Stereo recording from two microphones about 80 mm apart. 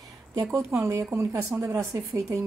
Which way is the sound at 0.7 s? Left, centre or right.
Right.